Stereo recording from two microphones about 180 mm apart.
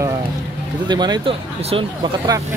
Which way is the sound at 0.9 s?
25° right (ahead or behind).